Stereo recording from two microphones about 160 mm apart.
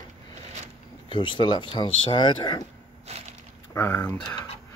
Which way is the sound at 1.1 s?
30° left (ahead or behind).